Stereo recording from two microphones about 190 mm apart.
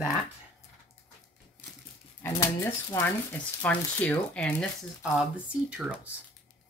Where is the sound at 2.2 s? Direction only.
15° left (ahead or behind).